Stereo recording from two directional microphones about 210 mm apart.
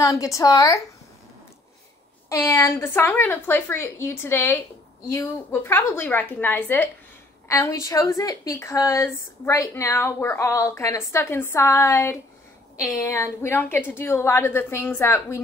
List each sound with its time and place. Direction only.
0.0 s a woman's voice: 15° left (ahead or behind)
2.2 s a woman's voice: 15° left (ahead or behind)